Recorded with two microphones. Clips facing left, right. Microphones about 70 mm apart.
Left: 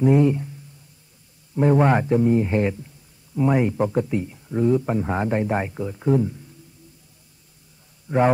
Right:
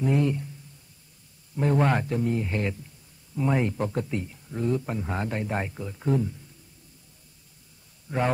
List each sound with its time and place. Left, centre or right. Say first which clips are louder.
0.0 s speech: left 7 dB; centre
1.6 s speech: left 6 dB; centre
3.3 s speech: left 6 dB; centre
8.1 s speech: left 8 dB; left